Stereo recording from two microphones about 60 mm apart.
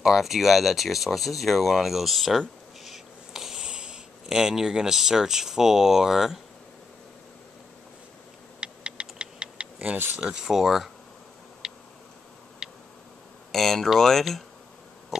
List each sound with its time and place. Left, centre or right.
0.0 s speech: centre
8.5 s typing: centre
9.0 s clock: centre
10.1 s speech: centre
11.6 s a sound: centre
13.5 s speech: centre